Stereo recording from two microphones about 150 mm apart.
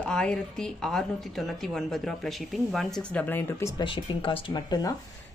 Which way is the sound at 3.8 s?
35° left (ahead or behind).